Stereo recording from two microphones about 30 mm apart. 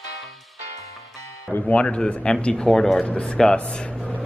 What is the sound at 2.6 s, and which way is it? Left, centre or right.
Speech, centre.